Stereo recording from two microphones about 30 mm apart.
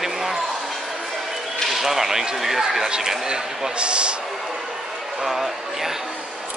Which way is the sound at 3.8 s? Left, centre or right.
Right.